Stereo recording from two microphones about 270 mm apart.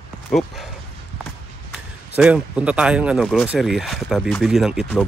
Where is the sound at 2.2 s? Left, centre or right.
Centre.